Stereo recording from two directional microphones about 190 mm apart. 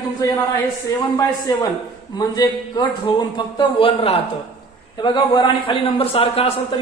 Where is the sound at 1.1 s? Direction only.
20° left (ahead or behind).